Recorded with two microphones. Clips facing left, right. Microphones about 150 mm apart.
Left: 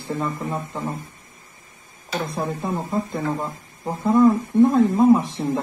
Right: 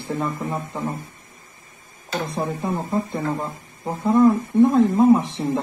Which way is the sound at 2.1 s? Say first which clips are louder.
Even; centre (ahead or behind).